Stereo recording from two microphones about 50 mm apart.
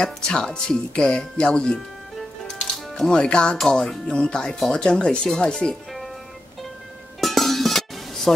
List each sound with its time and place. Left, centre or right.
0.0 s speech: centre
2.4 s music: centre
3.5 s speech: centre
4.1 s speech: centre
7.2 s music: centre